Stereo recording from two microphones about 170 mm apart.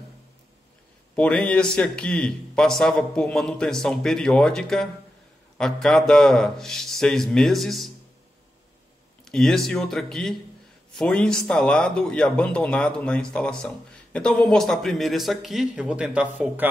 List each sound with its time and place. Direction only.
1.1 s speech: 5° left (ahead or behind)
9.2 s a sound: 5° left (ahead or behind)
9.7 s speech: centre (ahead or behind)